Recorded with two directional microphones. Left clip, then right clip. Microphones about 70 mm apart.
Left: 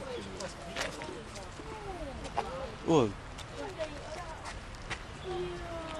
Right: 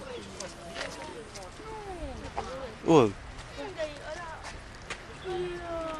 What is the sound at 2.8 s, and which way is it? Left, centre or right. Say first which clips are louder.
Speech: right 6 dB; right.